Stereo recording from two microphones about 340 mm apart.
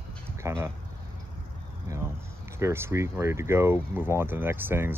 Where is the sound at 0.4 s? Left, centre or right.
Centre.